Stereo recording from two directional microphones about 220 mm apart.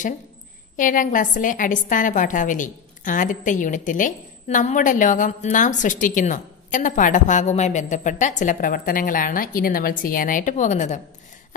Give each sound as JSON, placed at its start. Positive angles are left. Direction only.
{"t": 0.7, "sound": "a woman's voice", "side_deg": 35}